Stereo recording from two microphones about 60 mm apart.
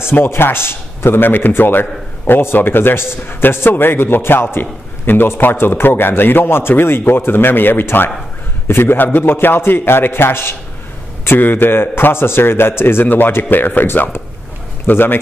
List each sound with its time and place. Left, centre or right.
0.0 s a man's voice: left